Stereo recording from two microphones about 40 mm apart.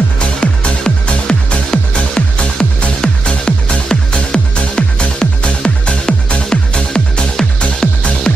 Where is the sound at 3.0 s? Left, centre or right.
Left.